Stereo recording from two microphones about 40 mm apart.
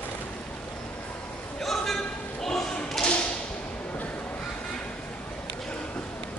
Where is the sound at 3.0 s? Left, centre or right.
Centre.